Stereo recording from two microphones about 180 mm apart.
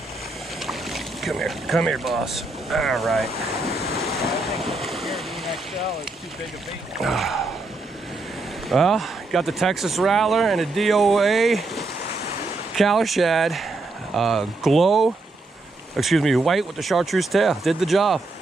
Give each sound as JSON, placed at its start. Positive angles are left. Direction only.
{"t": 0.7, "sound": "boat", "side_deg": 0}
{"t": 7.0, "sound": "speech", "side_deg": 0}
{"t": 8.6, "sound": "speech", "side_deg": 0}